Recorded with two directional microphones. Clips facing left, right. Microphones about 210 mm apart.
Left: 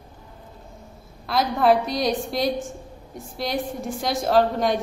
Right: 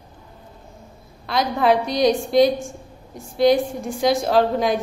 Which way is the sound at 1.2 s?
Centre (ahead or behind).